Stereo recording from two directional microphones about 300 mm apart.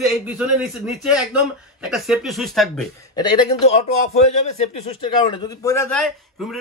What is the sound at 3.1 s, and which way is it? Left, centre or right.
A man's voice, centre.